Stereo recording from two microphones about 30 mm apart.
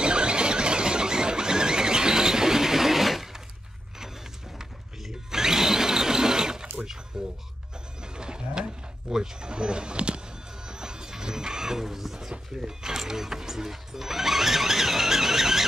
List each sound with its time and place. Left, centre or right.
0.0 s squeal: right; by 3.4 s centre
5.0 s blender: centre
8.0 s a sound: right
10.7 s music: right